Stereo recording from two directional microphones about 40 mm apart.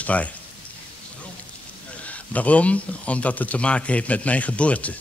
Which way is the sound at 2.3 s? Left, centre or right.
Left.